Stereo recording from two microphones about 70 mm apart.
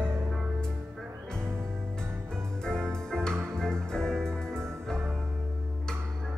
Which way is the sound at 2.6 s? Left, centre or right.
Centre.